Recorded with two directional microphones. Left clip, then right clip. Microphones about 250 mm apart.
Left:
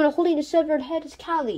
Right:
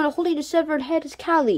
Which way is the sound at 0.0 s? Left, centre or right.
Centre.